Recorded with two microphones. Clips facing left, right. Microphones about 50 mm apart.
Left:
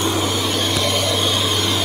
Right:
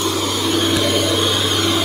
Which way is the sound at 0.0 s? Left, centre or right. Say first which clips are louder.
Even; centre.